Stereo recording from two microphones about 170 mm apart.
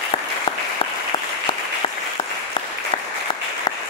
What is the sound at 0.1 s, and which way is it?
Applause, 35° left (ahead or behind).